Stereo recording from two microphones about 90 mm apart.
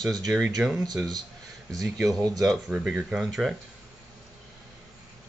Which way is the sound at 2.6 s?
15° right (ahead or behind).